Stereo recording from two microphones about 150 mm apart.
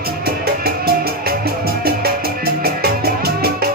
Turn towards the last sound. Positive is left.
turn(degrees=-90)